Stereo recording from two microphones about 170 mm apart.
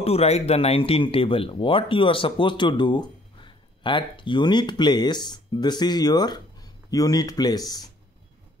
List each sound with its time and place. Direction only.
0.0 s speech: 35° left (ahead or behind)